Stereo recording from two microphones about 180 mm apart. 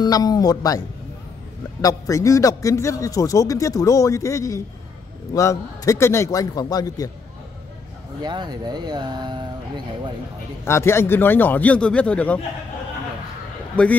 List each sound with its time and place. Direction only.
0.0 s a man's voice: 20° left (ahead or behind)
8.2 s speech: 25° right (ahead or behind)
10.6 s a man's voice: 15° left (ahead or behind)
13.8 s a man's voice: 5° left (ahead or behind)